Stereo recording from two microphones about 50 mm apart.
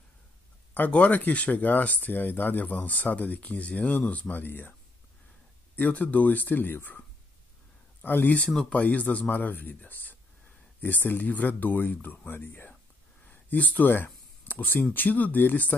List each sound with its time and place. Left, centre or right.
0.7 s speech: left
5.8 s speech: left
8.0 s speech: left
8.6 s speech: left
13.3 s speech: left